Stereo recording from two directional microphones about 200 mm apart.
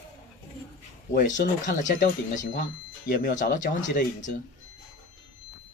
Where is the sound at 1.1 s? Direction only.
45° left (ahead or behind).